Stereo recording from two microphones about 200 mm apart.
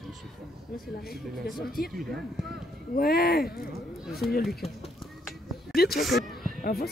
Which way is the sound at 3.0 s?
50° left (ahead or behind).